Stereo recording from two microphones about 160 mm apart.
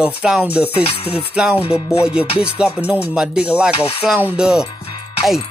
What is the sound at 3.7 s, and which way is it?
Speech, 40° left (ahead or behind).